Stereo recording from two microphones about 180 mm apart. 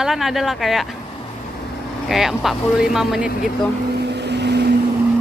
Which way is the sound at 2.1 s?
Centre (ahead or behind).